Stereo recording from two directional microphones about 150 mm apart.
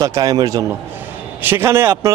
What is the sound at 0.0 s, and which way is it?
Speech, 25° right (ahead or behind).